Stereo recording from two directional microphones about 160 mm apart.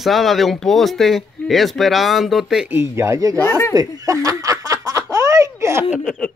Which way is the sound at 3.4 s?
15° left (ahead or behind).